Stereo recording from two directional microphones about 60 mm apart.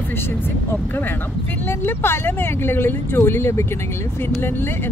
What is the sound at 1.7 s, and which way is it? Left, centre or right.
Speech, left.